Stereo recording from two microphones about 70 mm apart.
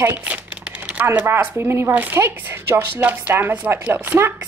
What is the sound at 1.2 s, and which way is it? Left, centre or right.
Speech, right.